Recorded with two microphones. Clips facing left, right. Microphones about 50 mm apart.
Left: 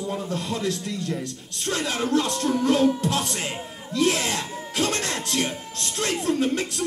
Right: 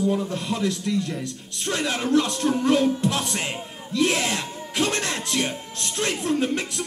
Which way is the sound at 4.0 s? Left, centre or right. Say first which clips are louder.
Even; right.